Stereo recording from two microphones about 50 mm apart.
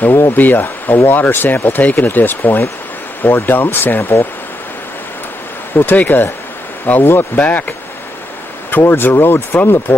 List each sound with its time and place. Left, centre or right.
0.1 s speech: left
5.9 s speech: left
7.3 s speech: left